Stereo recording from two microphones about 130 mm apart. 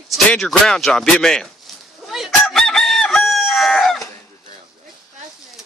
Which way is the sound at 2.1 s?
Centre (ahead or behind).